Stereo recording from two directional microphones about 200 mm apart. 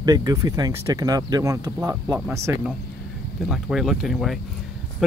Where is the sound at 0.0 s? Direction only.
20° right (ahead or behind).